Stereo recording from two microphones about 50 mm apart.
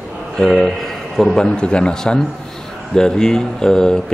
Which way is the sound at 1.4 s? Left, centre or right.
Centre.